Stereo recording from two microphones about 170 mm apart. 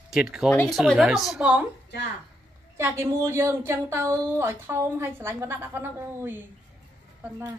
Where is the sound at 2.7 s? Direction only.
15° right (ahead or behind).